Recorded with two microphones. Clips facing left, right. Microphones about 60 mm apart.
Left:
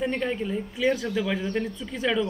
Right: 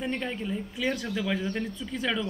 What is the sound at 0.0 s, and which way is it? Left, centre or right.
Speech, centre.